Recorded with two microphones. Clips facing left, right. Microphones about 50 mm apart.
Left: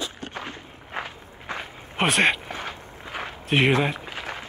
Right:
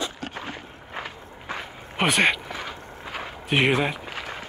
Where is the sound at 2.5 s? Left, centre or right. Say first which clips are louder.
Even; left.